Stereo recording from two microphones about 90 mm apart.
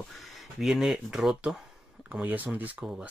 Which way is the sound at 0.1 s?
Centre (ahead or behind).